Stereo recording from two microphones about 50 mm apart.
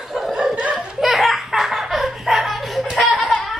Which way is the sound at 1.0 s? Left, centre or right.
Centre.